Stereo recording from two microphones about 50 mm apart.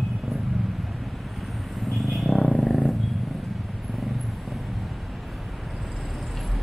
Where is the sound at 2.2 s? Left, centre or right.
Centre.